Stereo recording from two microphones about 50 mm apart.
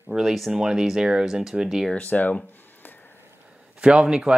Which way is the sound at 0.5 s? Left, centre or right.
Centre.